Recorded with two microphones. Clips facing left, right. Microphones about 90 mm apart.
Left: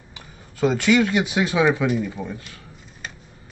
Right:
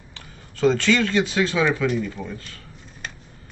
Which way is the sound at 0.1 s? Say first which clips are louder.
Left 1 dB; 10° left (ahead or behind).